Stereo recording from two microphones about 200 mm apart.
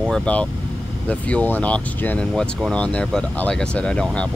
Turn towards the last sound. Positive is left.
turn(degrees=5)  # may be behind; listen again after turning